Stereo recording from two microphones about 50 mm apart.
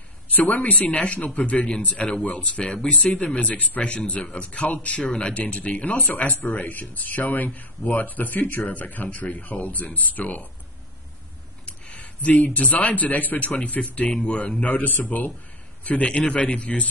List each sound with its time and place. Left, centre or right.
0.5 s a man's voice: left
11.6 s a sound: left
12.5 s a man's voice: left